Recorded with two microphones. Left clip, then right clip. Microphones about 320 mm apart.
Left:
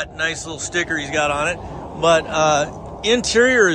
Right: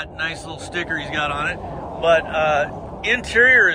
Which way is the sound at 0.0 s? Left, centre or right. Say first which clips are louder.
Left 3 dB; centre.